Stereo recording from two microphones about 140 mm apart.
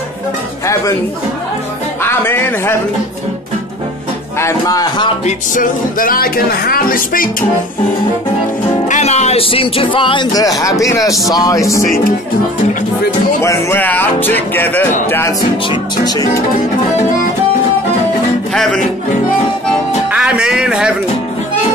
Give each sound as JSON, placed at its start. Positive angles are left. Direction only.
{"t": 2.0, "sound": "speech", "side_deg": 15}
{"t": 4.4, "sound": "speech", "side_deg": 20}
{"t": 5.2, "sound": "speech", "side_deg": 70}
{"t": 8.8, "sound": "speech", "side_deg": 55}
{"t": 13.4, "sound": "speech", "side_deg": 20}
{"t": 15.7, "sound": "speech", "side_deg": 25}
{"t": 18.5, "sound": "music", "side_deg": 5}
{"t": 20.1, "sound": "speech", "side_deg": -5}